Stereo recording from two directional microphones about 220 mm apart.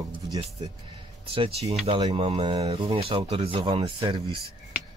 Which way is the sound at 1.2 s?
25° right (ahead or behind).